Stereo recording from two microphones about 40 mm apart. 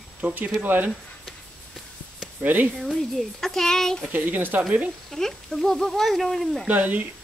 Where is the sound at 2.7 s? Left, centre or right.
Centre.